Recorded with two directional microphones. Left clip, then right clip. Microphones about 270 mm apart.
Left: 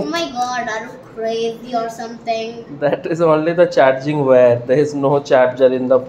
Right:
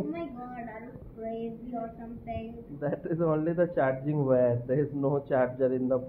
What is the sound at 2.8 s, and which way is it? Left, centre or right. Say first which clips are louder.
Speech: left 14 dB; centre.